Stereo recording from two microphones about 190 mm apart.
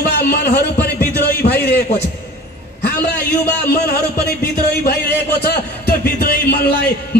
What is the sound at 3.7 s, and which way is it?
A man's voice, 55° left (ahead or behind).